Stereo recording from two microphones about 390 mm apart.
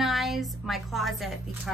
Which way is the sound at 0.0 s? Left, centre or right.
Centre.